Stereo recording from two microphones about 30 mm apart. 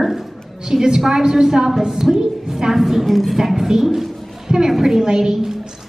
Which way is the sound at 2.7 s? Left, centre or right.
Centre.